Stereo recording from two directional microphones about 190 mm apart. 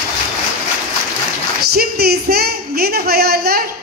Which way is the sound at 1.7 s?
55° right (ahead or behind).